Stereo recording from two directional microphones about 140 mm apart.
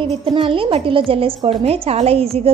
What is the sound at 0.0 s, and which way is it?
A woman's voice, 40° right (ahead or behind).